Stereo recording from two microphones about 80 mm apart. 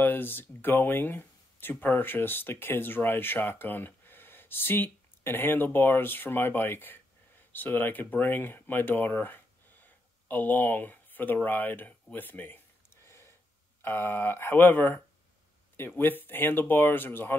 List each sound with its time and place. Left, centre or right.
0.0 s speech: left
11.4 s a sound: left
13.8 s speech: left